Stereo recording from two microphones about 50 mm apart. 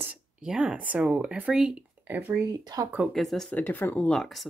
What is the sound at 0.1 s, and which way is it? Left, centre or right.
Speech, right.